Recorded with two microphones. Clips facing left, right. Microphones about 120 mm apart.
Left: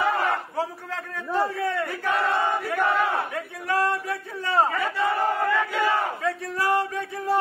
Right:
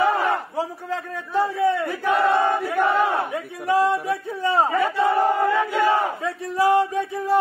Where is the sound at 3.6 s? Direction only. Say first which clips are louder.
Right 5 dB; 20° right (ahead or behind).